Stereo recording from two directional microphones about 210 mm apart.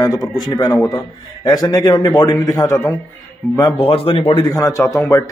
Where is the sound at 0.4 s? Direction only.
20° left (ahead or behind).